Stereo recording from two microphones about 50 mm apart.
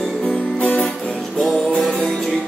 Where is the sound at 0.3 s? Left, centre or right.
Left.